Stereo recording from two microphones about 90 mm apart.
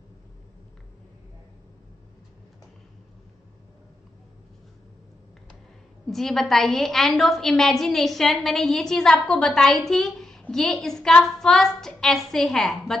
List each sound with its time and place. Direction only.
6.0 s a woman's voice: 5° left (ahead or behind)